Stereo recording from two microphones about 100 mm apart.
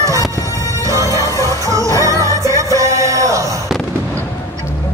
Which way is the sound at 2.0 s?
30° right (ahead or behind).